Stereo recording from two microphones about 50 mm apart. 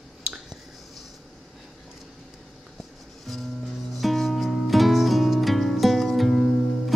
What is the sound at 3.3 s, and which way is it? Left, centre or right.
Music, centre.